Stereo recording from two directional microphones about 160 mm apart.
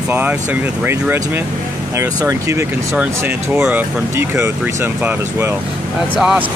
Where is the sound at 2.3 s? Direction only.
15° right (ahead or behind).